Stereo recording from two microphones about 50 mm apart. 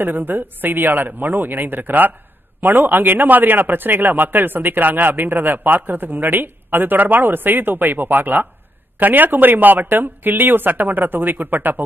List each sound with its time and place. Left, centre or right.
0.0 s a man's voice: right